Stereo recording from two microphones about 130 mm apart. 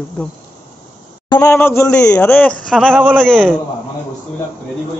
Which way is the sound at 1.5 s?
20° left (ahead or behind).